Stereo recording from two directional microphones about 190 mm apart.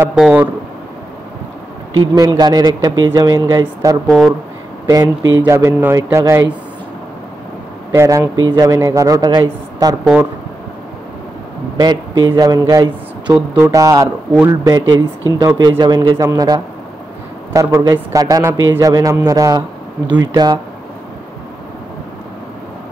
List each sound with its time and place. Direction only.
0.0 s a man's voice: 5° right (ahead or behind)
2.0 s a man's voice: 20° right (ahead or behind)
4.1 s speech: centre (ahead or behind)
4.8 s a man's voice: 20° right (ahead or behind)
7.9 s a man's voice: 15° right (ahead or behind)
11.7 s a man's voice: 20° right (ahead or behind)